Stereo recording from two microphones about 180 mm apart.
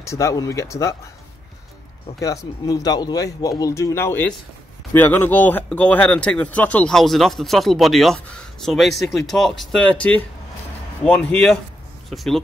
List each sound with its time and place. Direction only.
0.0 s speech: 15° left (ahead or behind)
2.1 s speech: 20° left (ahead or behind); by 12.4 s centre (ahead or behind)